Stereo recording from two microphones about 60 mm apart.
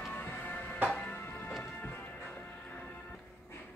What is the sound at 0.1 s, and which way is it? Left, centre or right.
Music, left.